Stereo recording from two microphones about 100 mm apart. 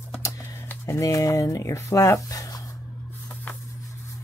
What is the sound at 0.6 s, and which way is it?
Speech, 25° left (ahead or behind).